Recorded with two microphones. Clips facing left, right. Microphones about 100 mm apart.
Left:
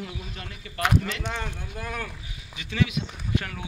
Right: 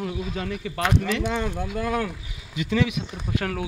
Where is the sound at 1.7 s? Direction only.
90° right.